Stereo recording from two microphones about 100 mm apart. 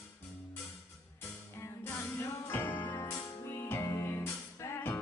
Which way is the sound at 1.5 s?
25° left (ahead or behind).